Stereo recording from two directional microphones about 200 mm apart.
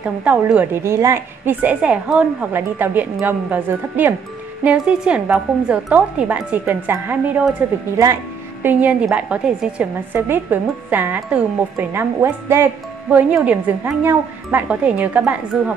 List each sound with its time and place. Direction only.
0.0 s a woman's voice: 5° right (ahead or behind)